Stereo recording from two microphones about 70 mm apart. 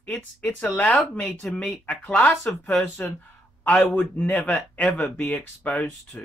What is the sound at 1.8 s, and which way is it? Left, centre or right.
Speech, left.